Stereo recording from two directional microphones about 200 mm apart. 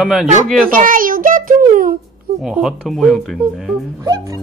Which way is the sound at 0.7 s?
45° right (ahead or behind).